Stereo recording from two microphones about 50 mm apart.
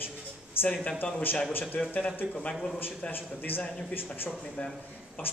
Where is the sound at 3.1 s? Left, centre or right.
Left.